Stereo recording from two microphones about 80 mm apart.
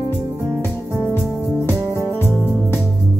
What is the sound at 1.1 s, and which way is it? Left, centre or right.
Music, left.